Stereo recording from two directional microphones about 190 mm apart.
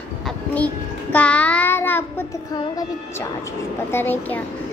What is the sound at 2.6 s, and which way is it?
Speech, 20° left (ahead or behind).